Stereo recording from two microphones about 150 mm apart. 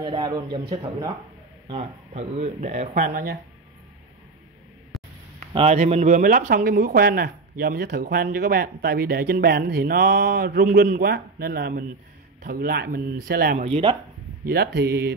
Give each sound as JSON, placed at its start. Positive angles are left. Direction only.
{"t": 0.2, "sound": "a man's voice", "side_deg": -30}
{"t": 1.7, "sound": "speech", "side_deg": -45}
{"t": 2.9, "sound": "speech", "side_deg": -65}
{"t": 5.5, "sound": "speech", "side_deg": -45}